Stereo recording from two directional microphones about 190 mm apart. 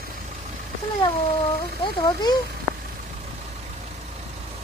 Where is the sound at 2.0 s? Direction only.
20° left (ahead or behind).